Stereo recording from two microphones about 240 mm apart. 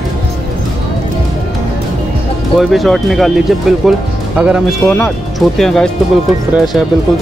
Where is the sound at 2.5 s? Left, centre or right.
Centre.